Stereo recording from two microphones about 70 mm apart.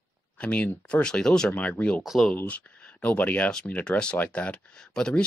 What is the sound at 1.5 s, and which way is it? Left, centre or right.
Speech, left.